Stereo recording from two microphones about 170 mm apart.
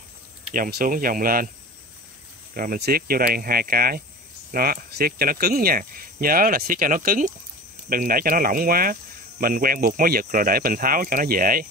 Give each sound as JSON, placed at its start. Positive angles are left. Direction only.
{"t": 0.5, "sound": "speech", "side_deg": -60}
{"t": 2.5, "sound": "speech", "side_deg": -60}